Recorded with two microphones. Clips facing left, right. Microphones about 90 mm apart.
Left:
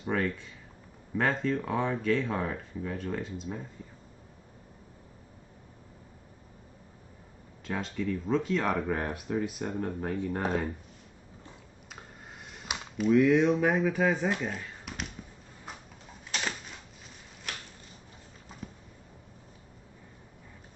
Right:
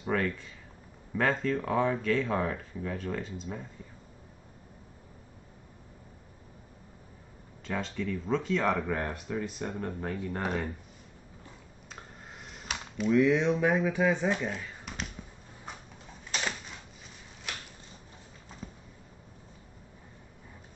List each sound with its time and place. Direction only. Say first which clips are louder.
0.0 s speech: even; centre (ahead or behind)
7.6 s speech: left 1 dB; 5° left (ahead or behind)
12.6 s speech: left 2 dB; 5° left (ahead or behind)
18.6 s a sound: left 1 dB; 5° left (ahead or behind)